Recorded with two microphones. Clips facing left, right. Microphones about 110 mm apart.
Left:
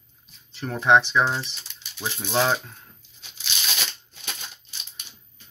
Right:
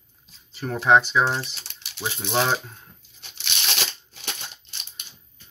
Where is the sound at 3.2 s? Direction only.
70° right (ahead or behind).